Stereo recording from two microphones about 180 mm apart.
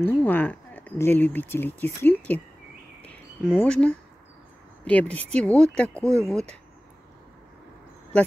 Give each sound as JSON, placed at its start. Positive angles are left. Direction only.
{"t": 0.0, "sound": "speech", "side_deg": 10}
{"t": 3.5, "sound": "speech", "side_deg": 5}
{"t": 6.0, "sound": "speech", "side_deg": -15}